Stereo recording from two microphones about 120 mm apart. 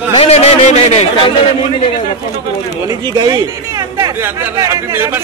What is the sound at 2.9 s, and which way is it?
Speech, 35° right (ahead or behind).